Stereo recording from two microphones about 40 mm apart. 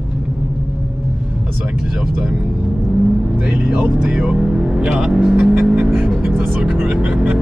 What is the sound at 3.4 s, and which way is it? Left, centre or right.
Vehicle, right.